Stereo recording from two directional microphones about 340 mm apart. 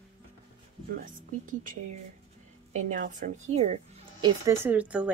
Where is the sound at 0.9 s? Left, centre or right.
Right; by 5.1 s centre.